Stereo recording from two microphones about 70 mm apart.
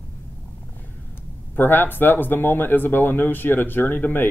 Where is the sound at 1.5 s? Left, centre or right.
Left.